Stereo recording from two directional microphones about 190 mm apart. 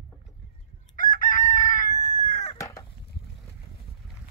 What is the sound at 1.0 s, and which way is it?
Chicken, 45° left (ahead or behind).